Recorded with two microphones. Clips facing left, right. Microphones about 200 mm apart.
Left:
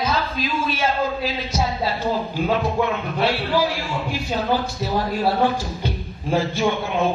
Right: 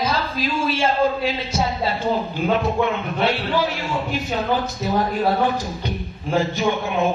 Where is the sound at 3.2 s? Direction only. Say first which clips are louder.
Left 1 dB; 25° right (ahead or behind).